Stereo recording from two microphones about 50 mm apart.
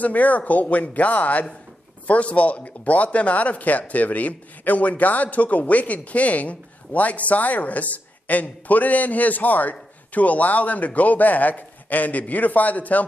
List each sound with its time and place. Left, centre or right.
0.0 s speech: left